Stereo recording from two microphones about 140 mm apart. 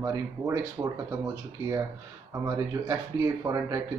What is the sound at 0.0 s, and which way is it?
Speech, 25° right (ahead or behind).